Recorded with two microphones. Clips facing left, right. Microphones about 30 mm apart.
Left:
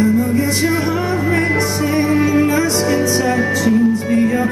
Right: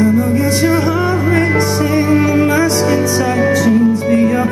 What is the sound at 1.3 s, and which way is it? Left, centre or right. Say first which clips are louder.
Music: right 3 dB; centre.